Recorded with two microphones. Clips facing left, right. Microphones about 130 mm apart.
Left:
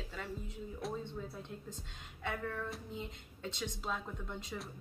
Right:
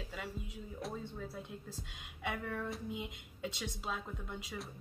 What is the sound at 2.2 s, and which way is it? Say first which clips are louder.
Speech: even; 15° right (ahead or behind).